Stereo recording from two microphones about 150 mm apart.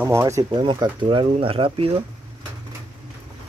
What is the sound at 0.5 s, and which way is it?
Speech, 35° right (ahead or behind).